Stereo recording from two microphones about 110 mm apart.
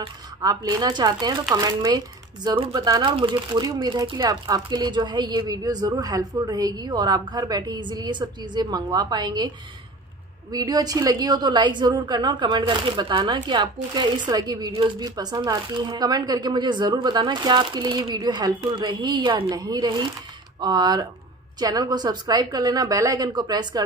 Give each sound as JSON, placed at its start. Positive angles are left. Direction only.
{"t": 0.4, "sound": "speech", "side_deg": -35}
{"t": 10.5, "sound": "a woman's voice", "side_deg": -35}
{"t": 19.5, "sound": "speech", "side_deg": -35}